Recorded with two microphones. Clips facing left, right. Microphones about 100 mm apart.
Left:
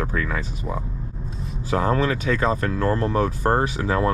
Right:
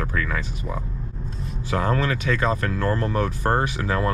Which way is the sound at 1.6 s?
35° left (ahead or behind).